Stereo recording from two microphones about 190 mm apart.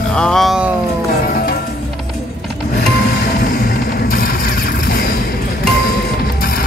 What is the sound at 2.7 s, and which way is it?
Music, 55° left (ahead or behind).